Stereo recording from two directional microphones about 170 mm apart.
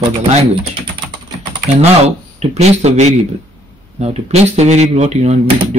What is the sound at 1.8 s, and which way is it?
Speech, 40° right (ahead or behind).